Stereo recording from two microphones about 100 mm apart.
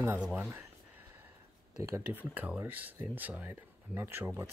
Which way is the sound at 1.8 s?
25° right (ahead or behind).